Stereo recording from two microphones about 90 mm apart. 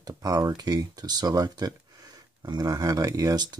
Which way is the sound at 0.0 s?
45° right (ahead or behind).